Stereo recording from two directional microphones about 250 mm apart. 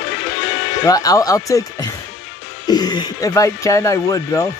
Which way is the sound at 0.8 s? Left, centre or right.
Centre.